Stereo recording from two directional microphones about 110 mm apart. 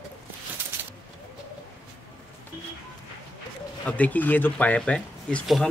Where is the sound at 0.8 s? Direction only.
20° right (ahead or behind).